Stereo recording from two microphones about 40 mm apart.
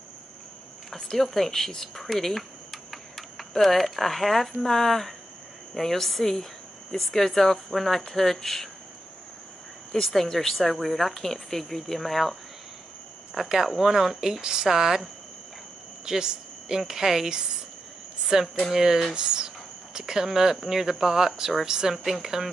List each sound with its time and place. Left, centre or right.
0.9 s speech: centre
10.2 s speech: centre
10.5 s speech: centre
13.3 s speech: centre
16.1 s speech: centre
18.3 s speech: centre
19.1 s speech: right; by 21.6 s centre
21.6 s speech: centre
21.9 s speech: centre